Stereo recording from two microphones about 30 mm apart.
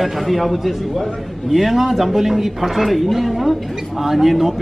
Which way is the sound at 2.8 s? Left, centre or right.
Centre.